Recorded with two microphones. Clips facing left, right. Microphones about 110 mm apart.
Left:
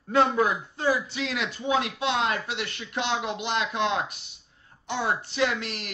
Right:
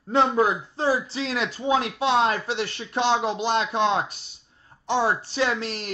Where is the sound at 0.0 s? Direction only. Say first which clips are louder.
Right 2 dB; 25° right (ahead or behind).